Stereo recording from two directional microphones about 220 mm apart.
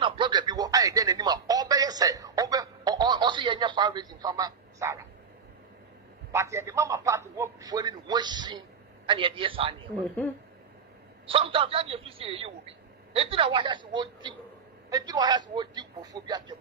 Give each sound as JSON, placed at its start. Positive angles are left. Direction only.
{"t": 0.0, "sound": "radio", "side_deg": -20}
{"t": 6.3, "sound": "a man's voice", "side_deg": -15}
{"t": 11.2, "sound": "a man's voice", "side_deg": -25}